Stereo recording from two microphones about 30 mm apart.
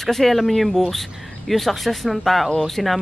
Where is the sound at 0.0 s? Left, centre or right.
Centre.